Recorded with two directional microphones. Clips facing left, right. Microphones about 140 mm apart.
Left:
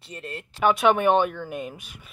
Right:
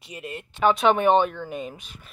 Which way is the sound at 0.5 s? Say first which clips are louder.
Even; 5° left (ahead or behind).